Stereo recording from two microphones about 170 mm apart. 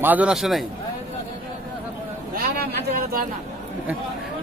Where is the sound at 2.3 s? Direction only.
60° right (ahead or behind).